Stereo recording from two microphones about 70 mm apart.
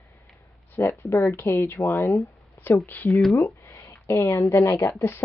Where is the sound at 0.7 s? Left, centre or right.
Left.